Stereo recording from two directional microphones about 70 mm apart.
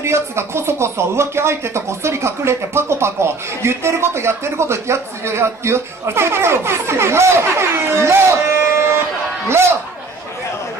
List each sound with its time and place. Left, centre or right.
0.0 s speech: right